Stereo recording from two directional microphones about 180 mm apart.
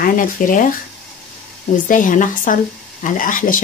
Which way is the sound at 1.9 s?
45° left (ahead or behind).